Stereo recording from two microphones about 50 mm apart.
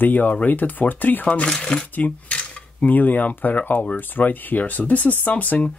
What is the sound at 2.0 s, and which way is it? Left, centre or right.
Speech, left.